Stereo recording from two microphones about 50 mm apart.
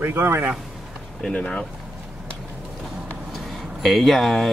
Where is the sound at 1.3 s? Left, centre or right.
Centre.